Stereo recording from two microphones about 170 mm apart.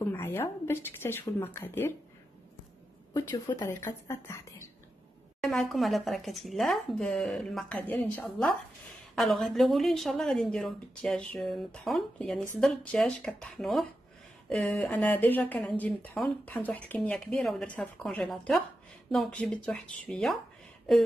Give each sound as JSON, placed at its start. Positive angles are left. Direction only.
{"t": 0.0, "sound": "speech", "side_deg": 15}
{"t": 3.1, "sound": "speech", "side_deg": 20}
{"t": 5.4, "sound": "a woman's voice", "side_deg": 0}